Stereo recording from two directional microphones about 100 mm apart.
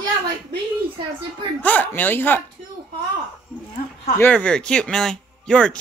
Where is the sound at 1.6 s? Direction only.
15° left (ahead or behind).